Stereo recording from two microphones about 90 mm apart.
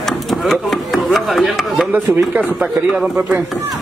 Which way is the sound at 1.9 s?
15° right (ahead or behind).